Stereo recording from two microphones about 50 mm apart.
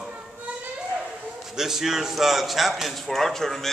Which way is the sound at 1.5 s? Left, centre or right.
Centre.